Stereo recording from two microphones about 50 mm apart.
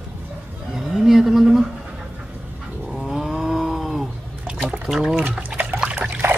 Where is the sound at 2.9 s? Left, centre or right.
Centre.